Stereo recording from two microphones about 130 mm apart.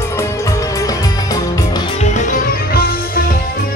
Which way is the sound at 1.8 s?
55° left (ahead or behind).